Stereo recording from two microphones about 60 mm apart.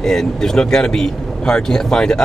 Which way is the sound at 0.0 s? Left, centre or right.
Centre.